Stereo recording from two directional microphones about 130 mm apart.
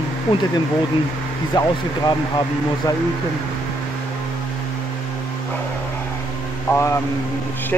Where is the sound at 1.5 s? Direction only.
35° left (ahead or behind).